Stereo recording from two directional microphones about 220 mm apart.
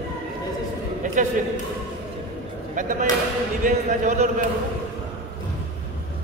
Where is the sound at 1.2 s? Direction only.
35° right (ahead or behind).